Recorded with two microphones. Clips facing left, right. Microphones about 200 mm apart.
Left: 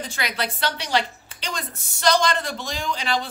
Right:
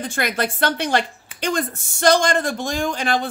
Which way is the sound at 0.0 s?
50° right (ahead or behind).